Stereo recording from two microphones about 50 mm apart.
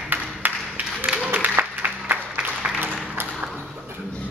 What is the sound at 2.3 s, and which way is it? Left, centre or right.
Applause, right.